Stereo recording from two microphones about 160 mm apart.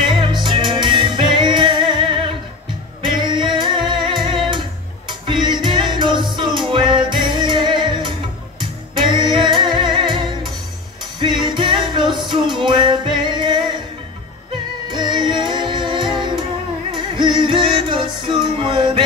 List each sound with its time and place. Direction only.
0.2 s music: 30° right (ahead or behind)
14.9 s music: 30° right (ahead or behind)